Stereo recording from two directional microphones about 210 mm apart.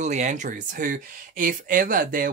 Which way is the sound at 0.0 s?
35° right (ahead or behind).